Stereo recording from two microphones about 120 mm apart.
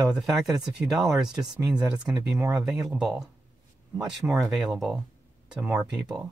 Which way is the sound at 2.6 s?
5° right (ahead or behind).